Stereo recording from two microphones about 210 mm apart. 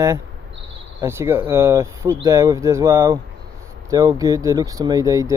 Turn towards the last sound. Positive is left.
turn(degrees=-15)  # may be behind; listen again after turning